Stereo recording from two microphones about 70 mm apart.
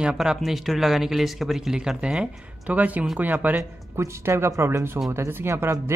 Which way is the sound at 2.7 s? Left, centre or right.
Right.